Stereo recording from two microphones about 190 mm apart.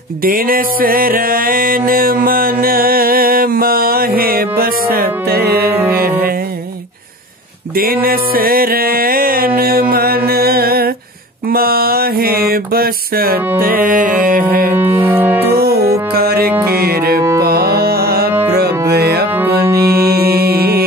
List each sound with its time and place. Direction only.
0.2 s music: 50° right (ahead or behind)
7.7 s music: 50° right (ahead or behind)
11.5 s a sound: 50° right (ahead or behind)
13.6 s music: 50° right (ahead or behind)
15.0 s music: 10° right (ahead or behind)
15.5 s music: 55° right (ahead or behind)
17.4 s carnatic music: 55° right (ahead or behind)
18.5 s music: 55° right (ahead or behind)